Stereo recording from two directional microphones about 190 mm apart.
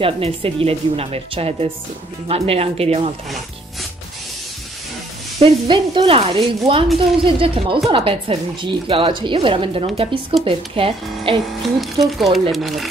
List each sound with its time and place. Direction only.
0.0 s a woman's voice: 30° right (ahead or behind)
5.4 s a woman's voice: 25° right (ahead or behind)
11.8 s speech: centre (ahead or behind)